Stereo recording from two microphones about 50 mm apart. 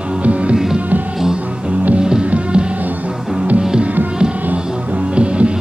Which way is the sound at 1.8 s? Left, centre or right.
Centre.